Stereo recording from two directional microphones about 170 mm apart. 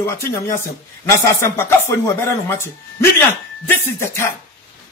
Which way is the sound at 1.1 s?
15° left (ahead or behind).